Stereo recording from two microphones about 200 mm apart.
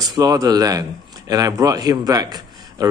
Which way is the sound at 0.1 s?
20° right (ahead or behind).